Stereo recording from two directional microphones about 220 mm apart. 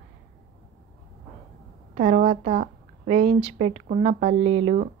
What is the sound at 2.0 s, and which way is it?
Speech, 35° right (ahead or behind).